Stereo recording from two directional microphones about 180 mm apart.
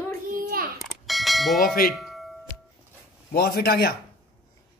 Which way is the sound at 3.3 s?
60° left (ahead or behind).